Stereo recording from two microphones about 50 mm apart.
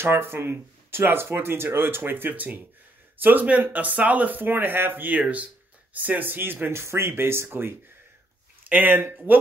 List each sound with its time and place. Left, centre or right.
0.0 s speech: right
2.3 s speech: right
6.8 s speech: right
7.4 s speech: right